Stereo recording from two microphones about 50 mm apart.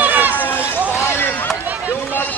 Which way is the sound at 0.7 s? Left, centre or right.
Right.